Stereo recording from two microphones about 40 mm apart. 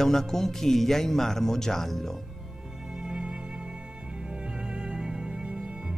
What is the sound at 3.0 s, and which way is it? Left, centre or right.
Music, right.